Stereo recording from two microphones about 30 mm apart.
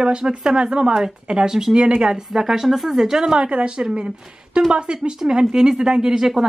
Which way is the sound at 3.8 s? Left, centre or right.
Right.